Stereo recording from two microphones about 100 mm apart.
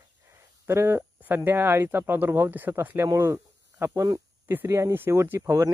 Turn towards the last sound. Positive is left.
turn(degrees=-30)  # may be behind; listen again after turning